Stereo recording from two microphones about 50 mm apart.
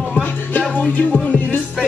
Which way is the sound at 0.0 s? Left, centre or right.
Left.